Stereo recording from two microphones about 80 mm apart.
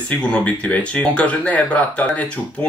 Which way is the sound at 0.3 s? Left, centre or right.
Centre.